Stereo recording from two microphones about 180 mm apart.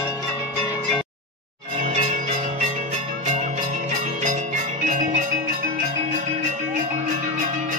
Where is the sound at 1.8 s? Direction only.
45° right (ahead or behind).